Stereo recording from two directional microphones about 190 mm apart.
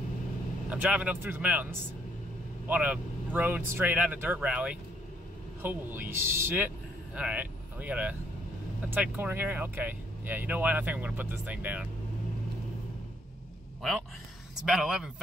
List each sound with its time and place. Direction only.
0.7 s speech: 5° right (ahead or behind)
2.7 s speech: 10° right (ahead or behind)
14.5 s speech: centre (ahead or behind)